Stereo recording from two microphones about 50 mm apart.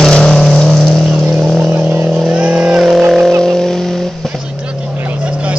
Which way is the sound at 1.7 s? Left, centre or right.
Right.